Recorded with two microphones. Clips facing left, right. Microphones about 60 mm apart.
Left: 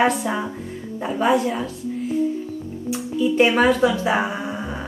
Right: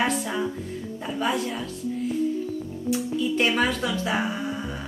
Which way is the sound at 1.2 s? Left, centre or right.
Centre.